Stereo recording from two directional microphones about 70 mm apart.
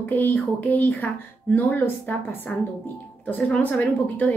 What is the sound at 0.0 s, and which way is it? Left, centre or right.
A woman's voice, left.